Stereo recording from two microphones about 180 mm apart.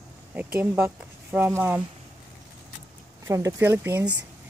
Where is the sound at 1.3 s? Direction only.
10° right (ahead or behind).